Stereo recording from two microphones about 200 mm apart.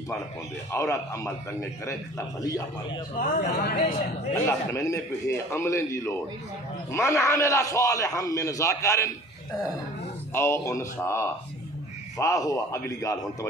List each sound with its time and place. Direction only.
0.7 s a man's voice: 15° left (ahead or behind)
3.2 s a man's voice: 50° left (ahead or behind)
4.3 s a man's voice: 15° left (ahead or behind)
10.3 s a man's voice: 15° left (ahead or behind)